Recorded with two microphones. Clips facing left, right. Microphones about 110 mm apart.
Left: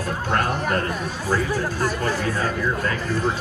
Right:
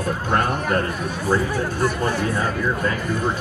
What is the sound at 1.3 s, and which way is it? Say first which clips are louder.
A man's voice: right 2 dB; 20° right (ahead or behind).